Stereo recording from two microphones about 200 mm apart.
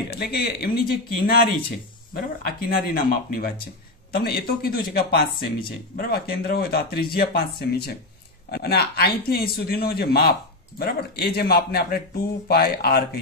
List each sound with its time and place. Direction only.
0.1 s speech: 50° left (ahead or behind)
2.4 s speech: 45° left (ahead or behind)